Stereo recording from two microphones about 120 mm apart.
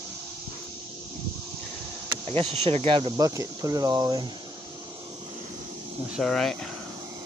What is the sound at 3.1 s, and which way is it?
Speech, 30° right (ahead or behind).